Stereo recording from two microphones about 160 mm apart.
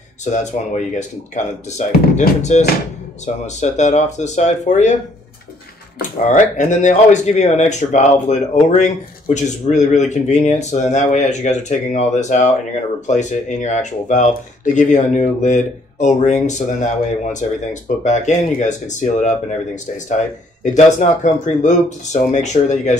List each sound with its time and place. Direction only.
0.2 s speech: 50° left (ahead or behind)
6.2 s speech: 50° left (ahead or behind)